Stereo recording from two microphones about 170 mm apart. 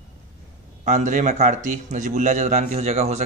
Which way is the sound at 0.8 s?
45° right (ahead or behind).